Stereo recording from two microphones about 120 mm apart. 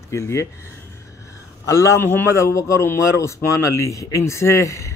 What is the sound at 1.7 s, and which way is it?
A man's voice, 25° left (ahead or behind).